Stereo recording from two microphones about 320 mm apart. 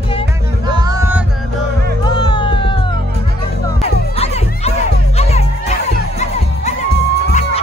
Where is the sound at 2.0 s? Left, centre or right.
Centre.